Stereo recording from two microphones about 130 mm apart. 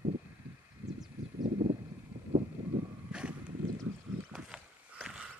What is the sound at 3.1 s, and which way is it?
Vehicle, 10° right (ahead or behind).